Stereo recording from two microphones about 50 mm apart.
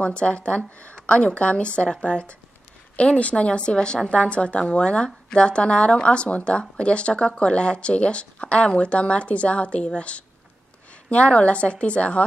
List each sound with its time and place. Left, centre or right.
0.0 s a woman's voice: left